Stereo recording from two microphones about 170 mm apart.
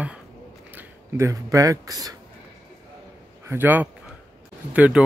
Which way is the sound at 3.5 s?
10° right (ahead or behind).